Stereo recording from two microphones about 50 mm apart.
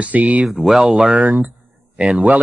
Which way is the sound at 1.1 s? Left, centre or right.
Right.